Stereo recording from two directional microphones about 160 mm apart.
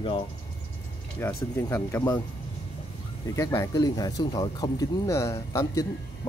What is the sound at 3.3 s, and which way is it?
Speech, 20° left (ahead or behind).